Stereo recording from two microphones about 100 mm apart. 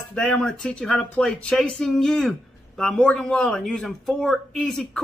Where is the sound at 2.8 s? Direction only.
5° left (ahead or behind).